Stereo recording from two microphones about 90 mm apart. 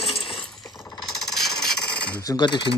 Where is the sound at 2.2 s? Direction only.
55° left (ahead or behind).